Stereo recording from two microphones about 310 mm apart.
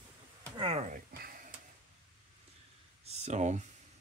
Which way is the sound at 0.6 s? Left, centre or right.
Centre.